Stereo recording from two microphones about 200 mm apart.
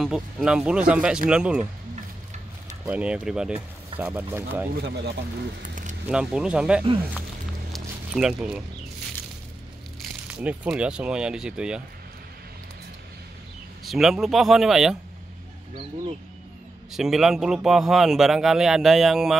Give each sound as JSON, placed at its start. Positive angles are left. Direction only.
{"t": 0.0, "sound": "a man's voice", "side_deg": -5}
{"t": 2.8, "sound": "a man's voice", "side_deg": -5}
{"t": 5.6, "sound": "keys jangling", "side_deg": -40}
{"t": 6.0, "sound": "a man's voice", "side_deg": -5}
{"t": 7.7, "sound": "a sound", "side_deg": -5}
{"t": 10.2, "sound": "a man's voice", "side_deg": -5}
{"t": 13.8, "sound": "a man's voice", "side_deg": 0}
{"t": 16.9, "sound": "a man's voice", "side_deg": 0}